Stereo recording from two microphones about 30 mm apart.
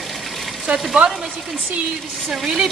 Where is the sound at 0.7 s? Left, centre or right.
Right.